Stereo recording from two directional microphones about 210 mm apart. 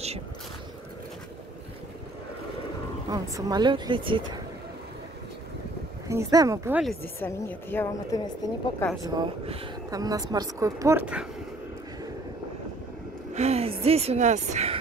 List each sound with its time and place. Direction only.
3.1 s speech: 15° right (ahead or behind)
6.0 s speech: 15° right (ahead or behind)
7.0 s a woman's voice: 10° left (ahead or behind)
8.7 s a woman's voice: 5° left (ahead or behind)
9.0 s speech: 20° right (ahead or behind)
13.3 s a sound: 30° right (ahead or behind)